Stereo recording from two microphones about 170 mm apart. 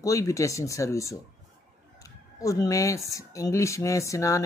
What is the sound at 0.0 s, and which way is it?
Speech, 20° left (ahead or behind).